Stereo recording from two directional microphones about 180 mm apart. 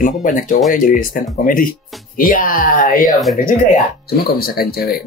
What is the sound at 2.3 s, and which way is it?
Speech, 50° left (ahead or behind).